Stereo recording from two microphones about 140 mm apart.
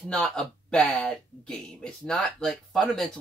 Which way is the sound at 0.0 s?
5° left (ahead or behind).